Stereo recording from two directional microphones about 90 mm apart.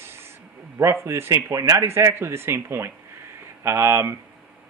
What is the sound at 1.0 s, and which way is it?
Speech, 30° right (ahead or behind).